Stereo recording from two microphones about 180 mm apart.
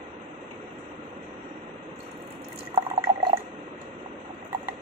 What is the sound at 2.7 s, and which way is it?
Drip, 20° right (ahead or behind).